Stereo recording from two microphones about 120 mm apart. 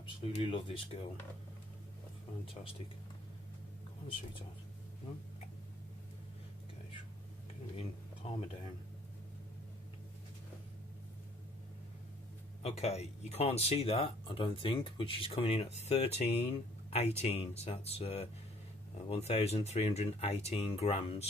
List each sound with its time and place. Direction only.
0.0 s speech: 45° left (ahead or behind)
7.7 s speech: 55° left (ahead or behind)
12.6 s speech: 65° left (ahead or behind)